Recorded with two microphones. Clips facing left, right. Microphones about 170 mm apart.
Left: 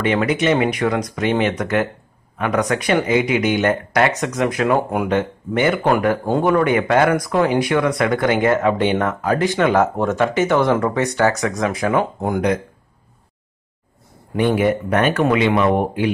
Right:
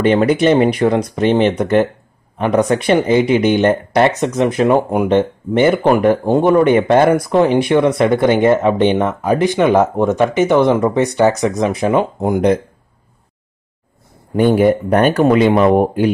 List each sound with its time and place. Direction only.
0.0 s speech: 35° right (ahead or behind)
14.3 s speech: 40° right (ahead or behind)